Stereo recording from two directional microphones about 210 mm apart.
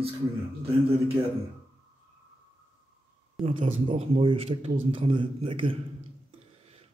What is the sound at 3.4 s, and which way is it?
Speech, 25° right (ahead or behind).